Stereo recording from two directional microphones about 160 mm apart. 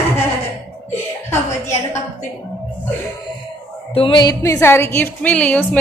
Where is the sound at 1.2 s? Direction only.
15° left (ahead or behind).